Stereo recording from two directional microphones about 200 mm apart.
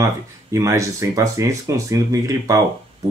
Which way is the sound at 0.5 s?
15° right (ahead or behind).